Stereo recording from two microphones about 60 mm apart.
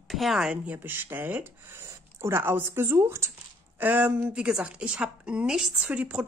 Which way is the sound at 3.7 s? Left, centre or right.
Right.